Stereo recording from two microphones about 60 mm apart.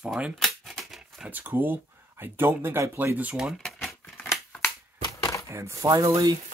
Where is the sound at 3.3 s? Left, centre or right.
Centre.